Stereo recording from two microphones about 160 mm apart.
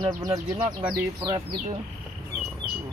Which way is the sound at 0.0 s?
25° right (ahead or behind).